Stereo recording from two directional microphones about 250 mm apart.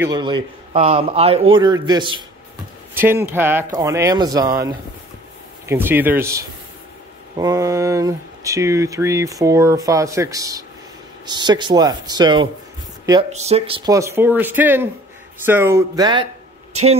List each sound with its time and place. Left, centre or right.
0.0 s a man's voice: centre
5.7 s speech: centre